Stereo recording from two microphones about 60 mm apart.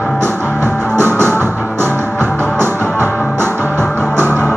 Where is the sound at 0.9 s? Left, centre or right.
Right.